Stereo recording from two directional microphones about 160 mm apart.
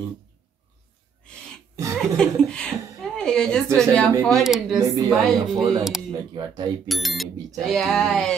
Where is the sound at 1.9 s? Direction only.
5° left (ahead or behind).